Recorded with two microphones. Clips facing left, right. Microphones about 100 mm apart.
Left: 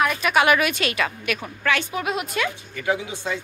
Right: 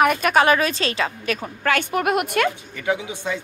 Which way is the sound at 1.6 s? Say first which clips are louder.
Right 4 dB; 50° right (ahead or behind).